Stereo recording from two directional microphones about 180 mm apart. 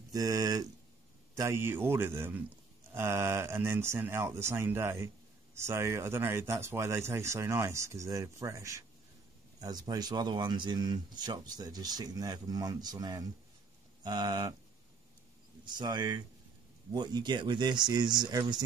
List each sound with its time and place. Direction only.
0.1 s speech: 20° right (ahead or behind)
15.6 s speech: 25° right (ahead or behind)